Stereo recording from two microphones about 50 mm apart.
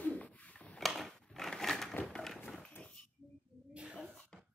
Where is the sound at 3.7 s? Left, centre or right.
Right.